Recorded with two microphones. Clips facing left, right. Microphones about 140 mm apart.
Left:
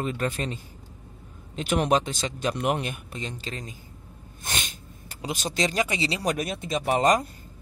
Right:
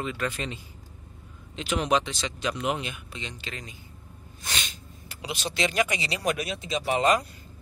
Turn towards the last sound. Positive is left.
turn(degrees=45)  # may be behind; listen again after turning